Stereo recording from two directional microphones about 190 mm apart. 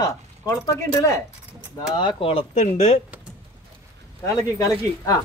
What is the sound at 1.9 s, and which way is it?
A man's voice, 25° left (ahead or behind).